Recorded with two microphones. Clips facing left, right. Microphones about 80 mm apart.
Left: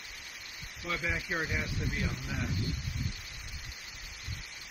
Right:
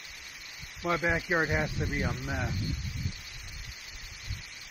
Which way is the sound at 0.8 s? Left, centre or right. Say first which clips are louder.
Right 7 dB; right.